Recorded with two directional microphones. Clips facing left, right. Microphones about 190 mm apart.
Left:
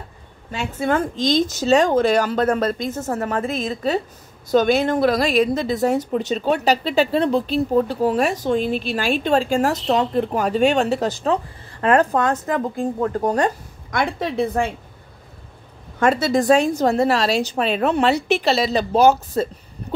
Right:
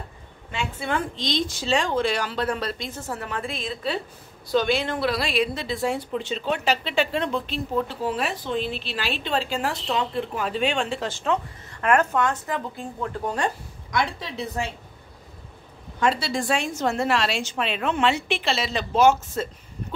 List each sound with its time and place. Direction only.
0.5 s a woman's voice: 45° left (ahead or behind)
16.0 s a woman's voice: 45° left (ahead or behind)